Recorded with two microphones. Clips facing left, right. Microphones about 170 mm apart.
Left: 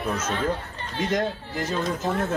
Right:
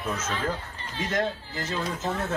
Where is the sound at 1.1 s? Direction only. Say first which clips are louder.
Left 1 dB; 10° left (ahead or behind).